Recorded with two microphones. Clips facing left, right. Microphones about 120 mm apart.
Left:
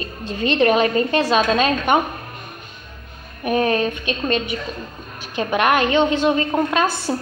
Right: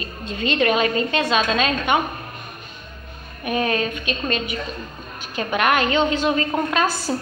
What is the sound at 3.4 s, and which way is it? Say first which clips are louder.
A woman's voice: left 4 dB; 35° left (ahead or behind).